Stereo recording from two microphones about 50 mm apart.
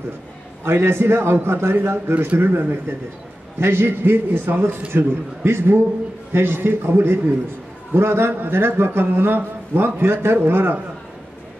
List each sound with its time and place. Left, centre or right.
0.7 s a man's voice: right
7.9 s a man's voice: right